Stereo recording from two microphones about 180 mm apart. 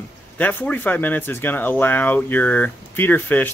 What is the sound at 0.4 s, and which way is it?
Speech, 10° left (ahead or behind).